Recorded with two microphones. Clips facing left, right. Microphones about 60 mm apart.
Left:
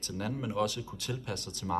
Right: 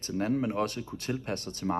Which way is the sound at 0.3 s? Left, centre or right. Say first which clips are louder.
Right 2 dB; right.